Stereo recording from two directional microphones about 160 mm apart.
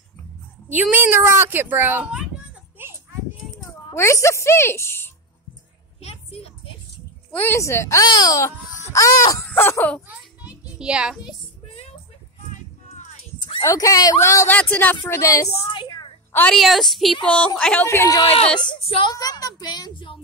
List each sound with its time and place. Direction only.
0.7 s a woman's voice: 10° right (ahead or behind)
2.8 s children playing: 15° right (ahead or behind)
3.9 s speech: 15° left (ahead or behind)
6.0 s a sound: 40° left (ahead or behind)
7.2 s a woman's voice: 10° left (ahead or behind)
10.0 s a sound: 10° right (ahead or behind)
12.5 s a sound: 50° left (ahead or behind)
13.6 s a woman's voice: 20° left (ahead or behind)
15.0 s a woman's voice: 20° left (ahead or behind)
15.7 s a sound: 30° left (ahead or behind)
16.3 s a woman's voice: 5° left (ahead or behind)
17.8 s speech: 20° left (ahead or behind)
18.2 s a woman's voice: 40° left (ahead or behind)